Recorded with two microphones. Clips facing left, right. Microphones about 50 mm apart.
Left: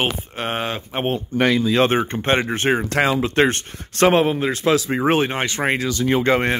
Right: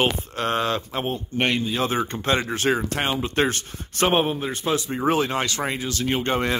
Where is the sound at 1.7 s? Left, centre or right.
Left.